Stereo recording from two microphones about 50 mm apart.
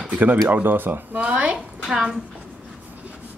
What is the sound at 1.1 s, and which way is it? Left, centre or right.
Speech, right.